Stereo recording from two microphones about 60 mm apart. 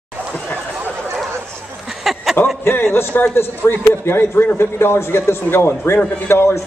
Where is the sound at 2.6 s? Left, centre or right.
Left.